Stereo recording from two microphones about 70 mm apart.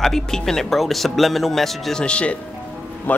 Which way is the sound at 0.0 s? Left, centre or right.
Centre.